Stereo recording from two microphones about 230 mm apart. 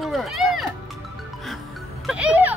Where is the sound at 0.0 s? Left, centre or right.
Centre.